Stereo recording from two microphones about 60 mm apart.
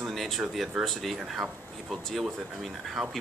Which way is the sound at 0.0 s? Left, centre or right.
Centre.